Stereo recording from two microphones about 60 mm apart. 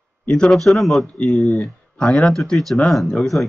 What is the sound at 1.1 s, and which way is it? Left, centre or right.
Speech, centre.